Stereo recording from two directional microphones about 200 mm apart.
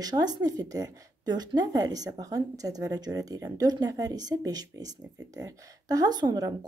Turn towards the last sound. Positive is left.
turn(degrees=-20)  # may be behind; listen again after turning